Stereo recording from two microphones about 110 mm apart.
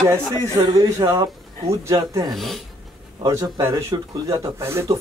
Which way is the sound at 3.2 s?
30° right (ahead or behind).